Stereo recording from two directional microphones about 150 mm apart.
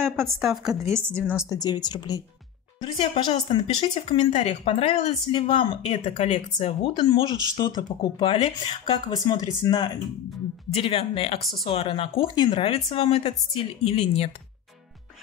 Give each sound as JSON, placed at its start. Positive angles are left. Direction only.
{"t": 0.0, "sound": "speech", "side_deg": -15}
{"t": 0.3, "sound": "speech", "side_deg": 0}
{"t": 0.7, "sound": "speech", "side_deg": -20}
{"t": 1.4, "sound": "speech", "side_deg": 25}
{"t": 2.8, "sound": "speech", "side_deg": 40}
{"t": 5.3, "sound": "speech", "side_deg": 35}
{"t": 10.7, "sound": "speech", "side_deg": 40}